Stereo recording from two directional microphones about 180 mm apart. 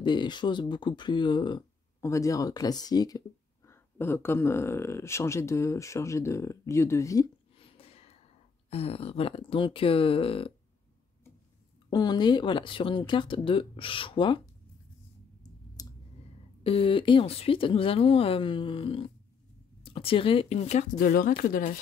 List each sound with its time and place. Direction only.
0.0 s speech: 25° left (ahead or behind)
7.5 s a sound: 30° left (ahead or behind)
8.6 s speech: 35° left (ahead or behind)
11.9 s speech: 25° left (ahead or behind)
15.8 s clicking: 20° left (ahead or behind)
16.6 s speech: 30° left (ahead or behind)
21.0 s speech: 55° left (ahead or behind)